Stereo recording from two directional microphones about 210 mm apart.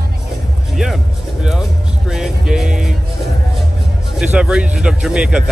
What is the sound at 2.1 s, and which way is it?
Speech, centre (ahead or behind).